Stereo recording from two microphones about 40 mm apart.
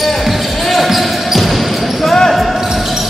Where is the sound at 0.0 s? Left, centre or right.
Centre.